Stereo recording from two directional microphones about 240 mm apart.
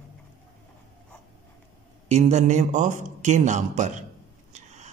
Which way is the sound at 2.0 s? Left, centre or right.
Right.